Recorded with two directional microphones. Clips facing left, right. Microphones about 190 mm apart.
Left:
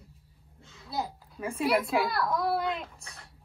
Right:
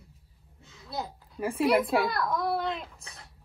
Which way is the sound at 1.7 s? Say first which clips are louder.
Right 2 dB; centre (ahead or behind).